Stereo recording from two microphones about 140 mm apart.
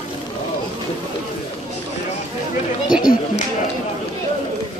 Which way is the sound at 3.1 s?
90° left.